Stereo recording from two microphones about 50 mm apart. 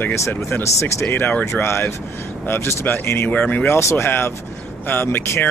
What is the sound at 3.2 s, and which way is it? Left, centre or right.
Speech, left.